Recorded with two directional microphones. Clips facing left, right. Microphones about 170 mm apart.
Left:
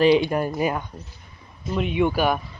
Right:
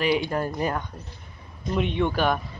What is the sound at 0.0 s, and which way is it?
Speech, 20° left (ahead or behind).